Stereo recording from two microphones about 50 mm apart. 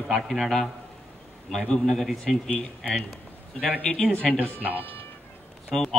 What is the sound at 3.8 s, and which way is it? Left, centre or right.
Speech, left.